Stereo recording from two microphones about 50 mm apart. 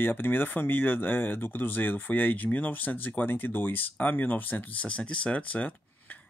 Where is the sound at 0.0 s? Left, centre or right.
Left.